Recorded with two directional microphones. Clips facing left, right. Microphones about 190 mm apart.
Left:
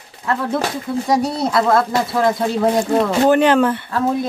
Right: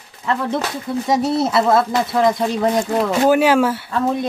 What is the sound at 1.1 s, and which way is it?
Speech, 5° right (ahead or behind).